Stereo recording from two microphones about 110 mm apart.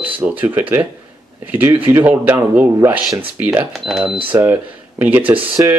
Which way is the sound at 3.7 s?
Centre (ahead or behind).